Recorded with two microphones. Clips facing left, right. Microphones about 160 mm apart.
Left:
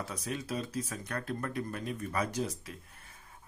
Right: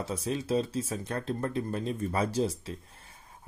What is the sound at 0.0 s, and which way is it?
Speech, 25° right (ahead or behind).